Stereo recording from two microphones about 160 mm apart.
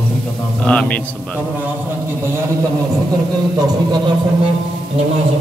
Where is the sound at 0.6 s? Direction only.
5° left (ahead or behind).